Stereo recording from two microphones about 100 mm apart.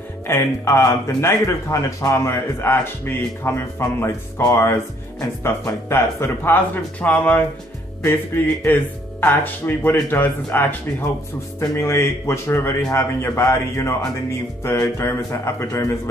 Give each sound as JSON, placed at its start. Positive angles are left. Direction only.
{"t": 0.3, "sound": "a man's voice", "side_deg": 30}
{"t": 4.4, "sound": "speech", "side_deg": 35}
{"t": 4.6, "sound": "a man's voice", "side_deg": 25}
{"t": 8.6, "sound": "a man's voice", "side_deg": 20}